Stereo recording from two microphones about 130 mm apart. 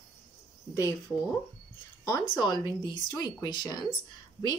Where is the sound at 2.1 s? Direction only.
30° left (ahead or behind).